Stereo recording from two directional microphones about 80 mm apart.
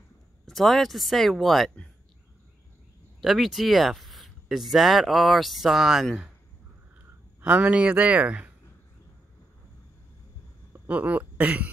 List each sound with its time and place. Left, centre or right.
0.5 s speech: centre
3.2 s speech: centre
7.4 s speech: centre
10.9 s speech: centre